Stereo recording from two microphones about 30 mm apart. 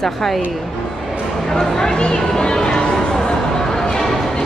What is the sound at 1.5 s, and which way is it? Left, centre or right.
Speech, centre.